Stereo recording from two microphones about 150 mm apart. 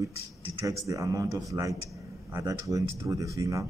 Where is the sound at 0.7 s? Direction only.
20° right (ahead or behind).